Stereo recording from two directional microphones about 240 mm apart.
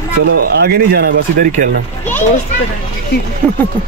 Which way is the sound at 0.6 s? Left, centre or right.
Right.